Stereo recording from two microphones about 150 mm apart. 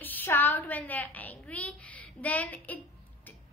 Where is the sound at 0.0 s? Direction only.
10° left (ahead or behind).